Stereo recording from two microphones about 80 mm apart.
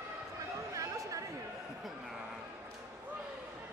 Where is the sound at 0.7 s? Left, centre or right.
Right.